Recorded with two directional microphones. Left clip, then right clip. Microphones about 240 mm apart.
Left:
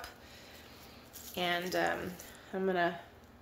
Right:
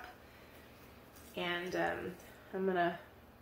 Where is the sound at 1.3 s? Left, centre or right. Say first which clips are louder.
Left 4 dB; left.